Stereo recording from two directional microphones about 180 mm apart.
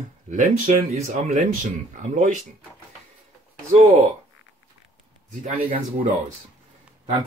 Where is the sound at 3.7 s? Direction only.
40° right (ahead or behind).